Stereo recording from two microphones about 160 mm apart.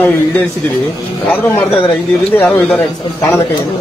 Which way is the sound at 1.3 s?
10° left (ahead or behind).